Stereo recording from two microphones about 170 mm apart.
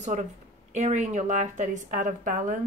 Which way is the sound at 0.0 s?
45° right (ahead or behind).